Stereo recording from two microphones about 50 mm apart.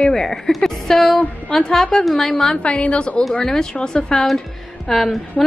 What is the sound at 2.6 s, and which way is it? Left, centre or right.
A woman's voice, left.